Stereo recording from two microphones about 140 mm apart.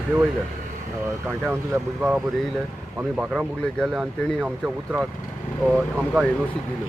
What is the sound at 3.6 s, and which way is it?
Speech, 5° left (ahead or behind).